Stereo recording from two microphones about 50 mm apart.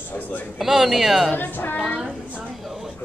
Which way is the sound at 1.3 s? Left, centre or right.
Left.